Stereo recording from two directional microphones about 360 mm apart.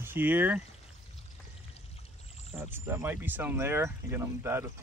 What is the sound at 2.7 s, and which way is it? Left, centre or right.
Speech, centre.